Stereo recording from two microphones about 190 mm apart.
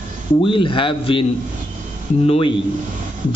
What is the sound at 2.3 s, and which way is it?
Speech, 25° left (ahead or behind).